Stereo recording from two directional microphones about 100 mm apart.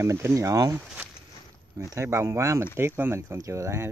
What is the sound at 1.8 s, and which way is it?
Speech, 30° right (ahead or behind).